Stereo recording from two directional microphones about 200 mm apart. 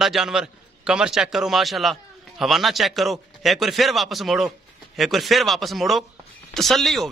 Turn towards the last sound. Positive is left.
turn(degrees=0)  # may be behind; listen again after turning